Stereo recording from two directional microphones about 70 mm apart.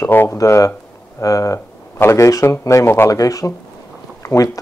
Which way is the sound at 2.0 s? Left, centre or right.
Left.